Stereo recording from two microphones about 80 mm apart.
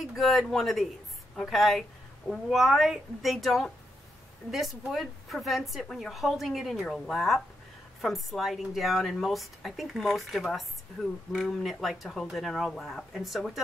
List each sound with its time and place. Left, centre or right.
0.0 s speech: centre